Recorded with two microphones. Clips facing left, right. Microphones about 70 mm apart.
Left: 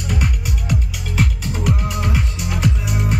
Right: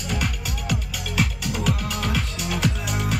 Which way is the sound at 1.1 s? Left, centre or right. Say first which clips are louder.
Left 3 dB; left.